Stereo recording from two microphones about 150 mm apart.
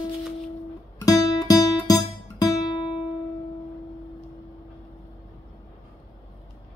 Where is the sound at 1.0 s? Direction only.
20° left (ahead or behind).